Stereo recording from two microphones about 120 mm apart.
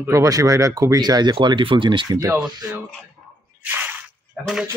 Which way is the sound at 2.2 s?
10° right (ahead or behind).